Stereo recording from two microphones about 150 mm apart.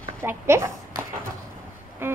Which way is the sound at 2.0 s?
15° right (ahead or behind).